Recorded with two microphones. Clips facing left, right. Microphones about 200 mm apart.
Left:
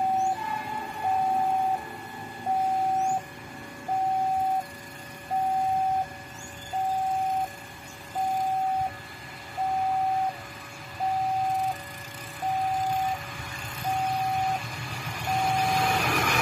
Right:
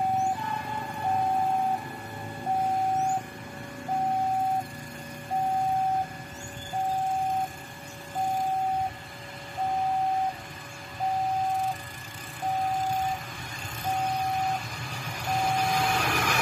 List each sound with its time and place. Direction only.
15.4 s vehicle: centre (ahead or behind)